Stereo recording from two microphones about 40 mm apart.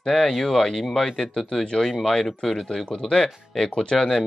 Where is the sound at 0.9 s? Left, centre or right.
Centre.